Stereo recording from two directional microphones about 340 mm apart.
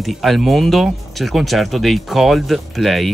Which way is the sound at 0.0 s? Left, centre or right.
Centre.